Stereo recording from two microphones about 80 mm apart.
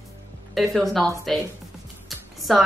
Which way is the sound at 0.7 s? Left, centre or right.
Centre.